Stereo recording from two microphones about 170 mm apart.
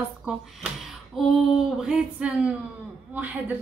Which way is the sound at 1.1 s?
Centre (ahead or behind).